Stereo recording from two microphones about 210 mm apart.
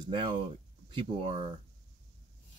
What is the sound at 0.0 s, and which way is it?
Speech, 20° right (ahead or behind).